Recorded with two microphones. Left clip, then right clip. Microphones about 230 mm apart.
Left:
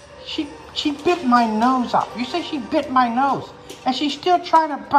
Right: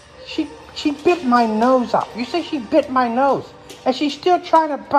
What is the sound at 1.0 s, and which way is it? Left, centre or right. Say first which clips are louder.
A woman's voice: right 1 dB; centre.